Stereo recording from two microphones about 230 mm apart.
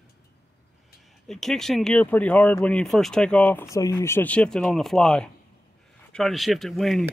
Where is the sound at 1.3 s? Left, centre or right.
Centre.